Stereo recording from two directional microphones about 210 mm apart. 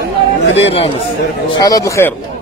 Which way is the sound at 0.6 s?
25° left (ahead or behind).